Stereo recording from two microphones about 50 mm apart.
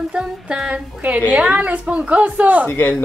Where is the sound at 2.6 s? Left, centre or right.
Left.